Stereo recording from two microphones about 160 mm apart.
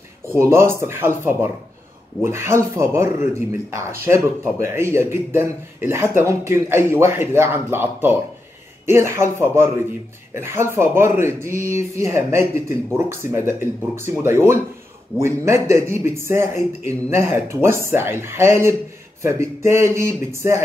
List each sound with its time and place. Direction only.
0.3 s a man's voice: 15° right (ahead or behind)